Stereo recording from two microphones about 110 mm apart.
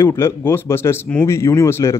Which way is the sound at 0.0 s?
20° left (ahead or behind).